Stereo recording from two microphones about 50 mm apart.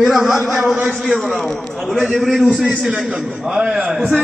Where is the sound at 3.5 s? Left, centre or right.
Right.